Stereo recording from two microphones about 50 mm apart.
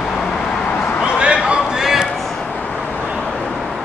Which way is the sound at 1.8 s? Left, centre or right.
Centre.